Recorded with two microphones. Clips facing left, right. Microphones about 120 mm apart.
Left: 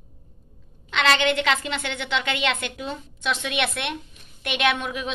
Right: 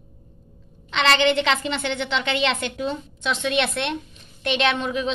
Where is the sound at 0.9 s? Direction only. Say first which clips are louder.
Right 2 dB; 5° left (ahead or behind).